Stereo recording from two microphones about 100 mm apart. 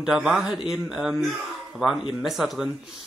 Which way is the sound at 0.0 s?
5° right (ahead or behind).